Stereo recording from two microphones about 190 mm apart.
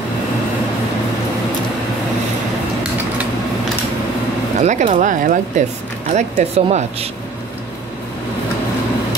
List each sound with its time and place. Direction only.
4.6 s speech: 40° right (ahead or behind)